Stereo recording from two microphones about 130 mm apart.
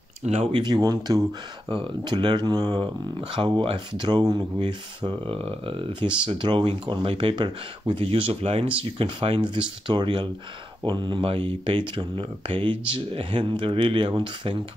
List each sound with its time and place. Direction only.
0.2 s speech: 60° right (ahead or behind)
0.5 s speech: 35° right (ahead or behind)
1.7 s speech: 40° right (ahead or behind)